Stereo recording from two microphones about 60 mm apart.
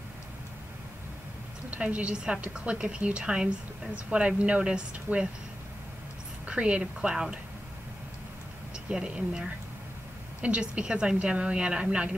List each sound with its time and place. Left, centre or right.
1.7 s a woman's voice: right
6.4 s a woman's voice: centre
8.9 s a woman's voice: centre